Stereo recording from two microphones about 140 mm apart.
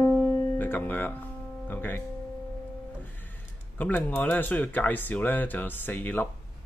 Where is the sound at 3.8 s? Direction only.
10° left (ahead or behind).